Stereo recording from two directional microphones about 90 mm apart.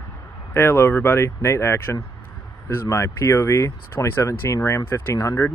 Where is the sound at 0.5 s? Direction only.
30° left (ahead or behind).